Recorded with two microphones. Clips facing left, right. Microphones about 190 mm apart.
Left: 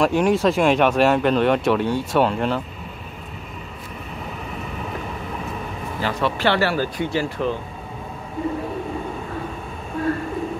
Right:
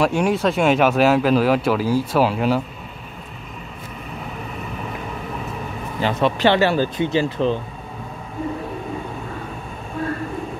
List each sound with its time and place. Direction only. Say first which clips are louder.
0.0 s speech: left 1 dB; centre (ahead or behind)
5.9 s speech: right 4 dB; 20° right (ahead or behind)